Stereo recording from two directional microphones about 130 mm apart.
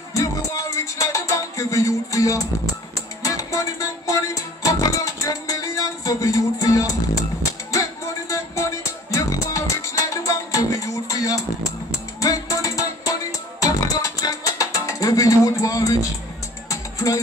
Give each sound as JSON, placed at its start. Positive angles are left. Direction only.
{"t": 0.1, "sound": "music", "side_deg": 25}